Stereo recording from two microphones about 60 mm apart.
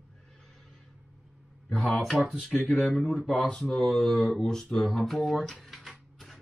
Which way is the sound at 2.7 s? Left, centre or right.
Centre.